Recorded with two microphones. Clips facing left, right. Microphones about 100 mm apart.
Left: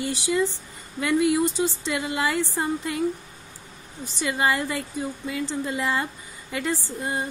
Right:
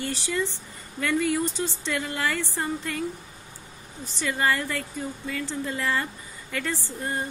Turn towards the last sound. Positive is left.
turn(degrees=15)  # may be behind; listen again after turning